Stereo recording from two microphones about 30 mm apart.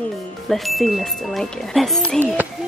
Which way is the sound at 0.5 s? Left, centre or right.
Centre.